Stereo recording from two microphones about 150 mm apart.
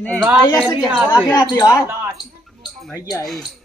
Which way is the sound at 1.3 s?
25° left (ahead or behind).